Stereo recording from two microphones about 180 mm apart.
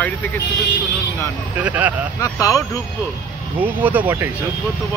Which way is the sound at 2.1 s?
20° left (ahead or behind).